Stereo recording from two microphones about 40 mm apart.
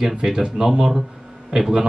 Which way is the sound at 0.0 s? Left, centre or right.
Centre.